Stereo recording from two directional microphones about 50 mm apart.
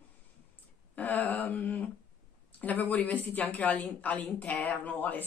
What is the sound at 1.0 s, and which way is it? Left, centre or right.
A woman's voice, left.